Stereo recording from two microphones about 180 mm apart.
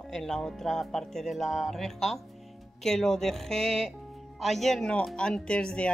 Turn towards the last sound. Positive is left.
turn(degrees=5)  # may be behind; listen again after turning